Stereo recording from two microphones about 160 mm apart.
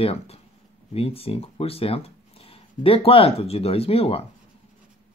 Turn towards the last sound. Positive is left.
turn(degrees=35)  # may be behind; listen again after turning